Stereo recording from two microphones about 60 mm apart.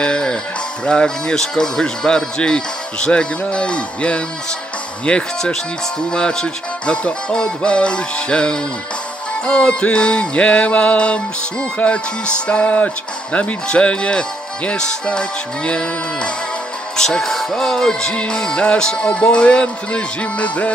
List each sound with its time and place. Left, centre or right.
0.0 s music: centre
0.8 s speech: centre